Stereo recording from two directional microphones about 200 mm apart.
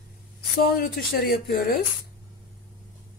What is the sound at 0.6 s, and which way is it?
Speech, 50° left (ahead or behind).